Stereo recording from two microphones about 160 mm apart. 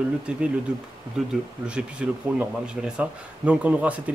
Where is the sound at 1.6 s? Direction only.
5° right (ahead or behind).